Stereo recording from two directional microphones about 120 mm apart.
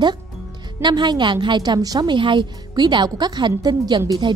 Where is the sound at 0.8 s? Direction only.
40° right (ahead or behind).